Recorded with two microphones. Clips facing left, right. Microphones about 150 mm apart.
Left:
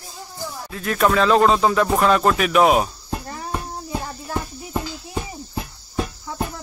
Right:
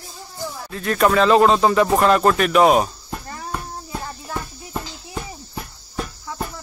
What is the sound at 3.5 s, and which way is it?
Child singing, 15° left (ahead or behind).